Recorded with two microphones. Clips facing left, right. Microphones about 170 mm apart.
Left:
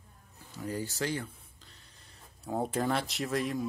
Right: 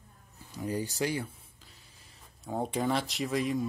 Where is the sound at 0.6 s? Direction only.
15° right (ahead or behind).